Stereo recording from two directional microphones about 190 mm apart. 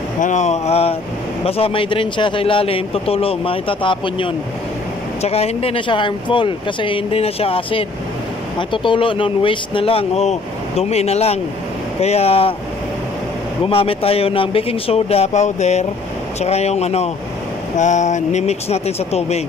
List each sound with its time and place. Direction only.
0.2 s a man's voice: 40° left (ahead or behind)
13.7 s speech: 30° left (ahead or behind)